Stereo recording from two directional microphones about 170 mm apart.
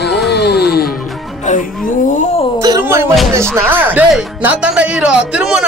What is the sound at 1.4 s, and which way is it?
Music, 50° left (ahead or behind).